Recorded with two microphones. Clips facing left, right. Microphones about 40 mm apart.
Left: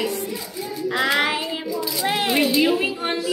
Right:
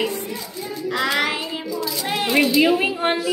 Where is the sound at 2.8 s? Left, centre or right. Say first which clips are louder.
Right 3 dB; right.